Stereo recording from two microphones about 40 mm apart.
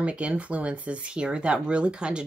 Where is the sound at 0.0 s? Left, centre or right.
Right.